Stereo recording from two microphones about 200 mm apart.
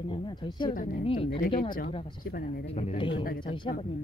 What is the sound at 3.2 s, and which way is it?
Speech, 45° left (ahead or behind).